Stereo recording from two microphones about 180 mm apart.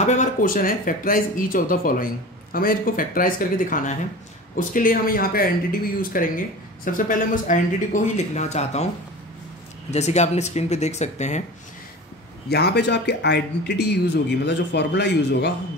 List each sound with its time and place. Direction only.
0.0 s speech: 40° left (ahead or behind)
9.8 s speech: 40° left (ahead or behind)
12.4 s a man's voice: 65° left (ahead or behind)